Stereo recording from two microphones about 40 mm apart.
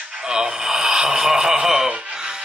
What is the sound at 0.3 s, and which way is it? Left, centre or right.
Speech, centre.